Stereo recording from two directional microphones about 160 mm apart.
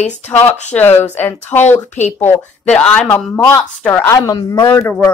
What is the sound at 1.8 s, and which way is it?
Speech, 50° left (ahead or behind).